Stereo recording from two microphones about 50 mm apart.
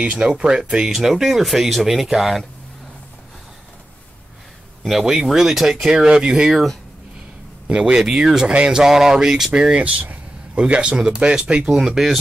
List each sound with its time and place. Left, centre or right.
0.0 s speech: right; by 2.4 s centre
4.8 s speech: centre
6.5 s speech: centre
7.6 s speech: centre
9.8 s a sound: right
10.6 s speech: centre
11.7 s speech: centre